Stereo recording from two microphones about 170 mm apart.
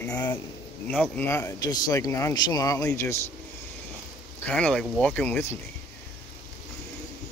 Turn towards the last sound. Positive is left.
turn(degrees=10)  # may be behind; listen again after turning